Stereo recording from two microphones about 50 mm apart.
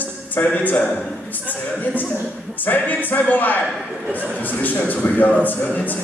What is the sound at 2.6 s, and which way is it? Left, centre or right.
A man's voice, left.